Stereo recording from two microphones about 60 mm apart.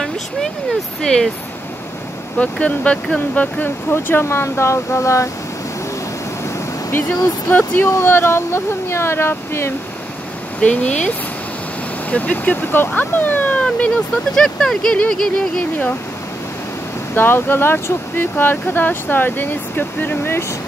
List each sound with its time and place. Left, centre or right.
1.0 s a sound: centre
2.3 s speech: left
3.9 s speech: left
6.4 s speech: left
10.6 s speech: left
15.0 s a sound: centre
17.1 s speech: left
18.2 s speech: left